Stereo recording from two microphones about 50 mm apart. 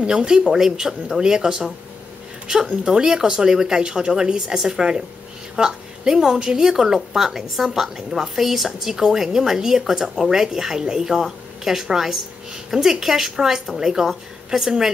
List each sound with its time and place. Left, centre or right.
0.0 s a woman's voice: centre